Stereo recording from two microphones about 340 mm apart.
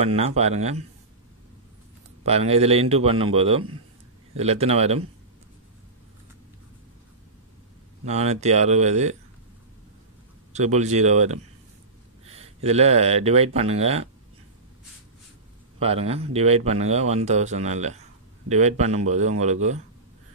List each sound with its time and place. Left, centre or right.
0.0 s speech: centre
2.2 s a man's voice: centre
8.0 s speech: centre
10.5 s speech: centre
12.6 s a man's voice: centre
15.8 s speech: centre